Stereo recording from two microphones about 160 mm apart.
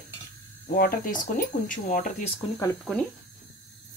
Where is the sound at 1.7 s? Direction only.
55° left (ahead or behind).